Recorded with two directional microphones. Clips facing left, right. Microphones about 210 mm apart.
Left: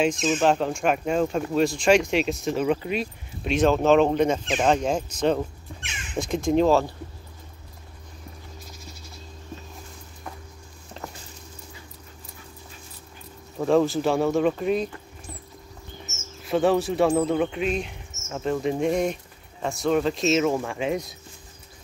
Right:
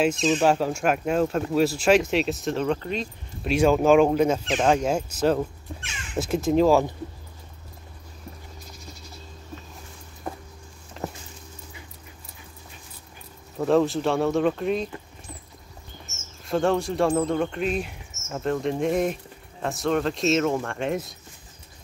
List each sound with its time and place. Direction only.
0.0 s speech: 5° right (ahead or behind)
3.4 s speech: 10° right (ahead or behind)
10.3 s a sound: 35° right (ahead or behind)
13.6 s speech: centre (ahead or behind)
16.4 s speech: 5° left (ahead or behind)